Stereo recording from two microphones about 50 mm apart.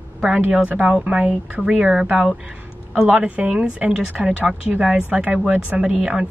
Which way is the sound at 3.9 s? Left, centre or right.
Centre.